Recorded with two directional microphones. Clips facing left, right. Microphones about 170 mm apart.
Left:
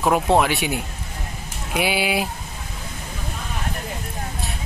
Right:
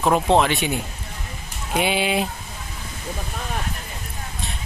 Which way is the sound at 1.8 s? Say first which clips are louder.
Right 1 dB; 5° left (ahead or behind).